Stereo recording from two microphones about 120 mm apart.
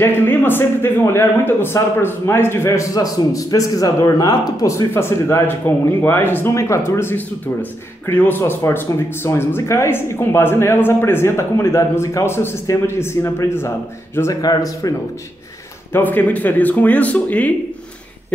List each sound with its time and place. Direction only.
0.0 s speech: 15° left (ahead or behind)
14.4 s speech: 30° left (ahead or behind)
15.9 s speech: 15° left (ahead or behind)